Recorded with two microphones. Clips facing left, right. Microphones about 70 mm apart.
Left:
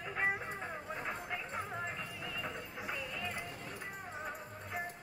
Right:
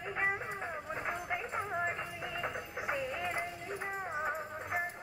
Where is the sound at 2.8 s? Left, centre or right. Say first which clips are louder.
Right 6 dB; right.